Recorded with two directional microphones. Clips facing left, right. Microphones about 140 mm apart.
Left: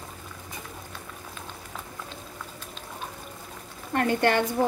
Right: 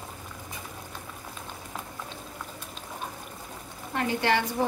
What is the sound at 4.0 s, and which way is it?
Speech, 55° left (ahead or behind).